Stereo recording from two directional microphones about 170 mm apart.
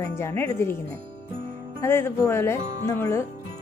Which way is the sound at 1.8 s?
15° left (ahead or behind).